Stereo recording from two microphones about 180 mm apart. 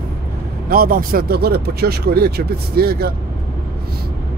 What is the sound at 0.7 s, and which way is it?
Speech, 55° right (ahead or behind).